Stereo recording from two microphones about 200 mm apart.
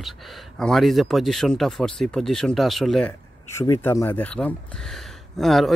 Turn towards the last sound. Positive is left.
turn(degrees=0)  # may be behind; listen again after turning